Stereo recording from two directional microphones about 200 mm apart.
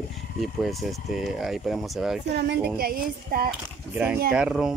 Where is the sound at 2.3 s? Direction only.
55° right (ahead or behind).